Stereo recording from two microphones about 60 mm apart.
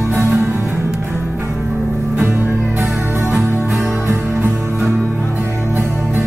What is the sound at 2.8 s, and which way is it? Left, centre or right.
Music, right.